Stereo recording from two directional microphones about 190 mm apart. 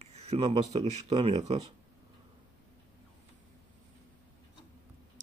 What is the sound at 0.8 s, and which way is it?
Speech, 35° right (ahead or behind).